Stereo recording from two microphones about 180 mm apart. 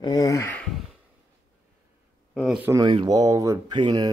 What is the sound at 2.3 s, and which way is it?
Speech, 5° right (ahead or behind).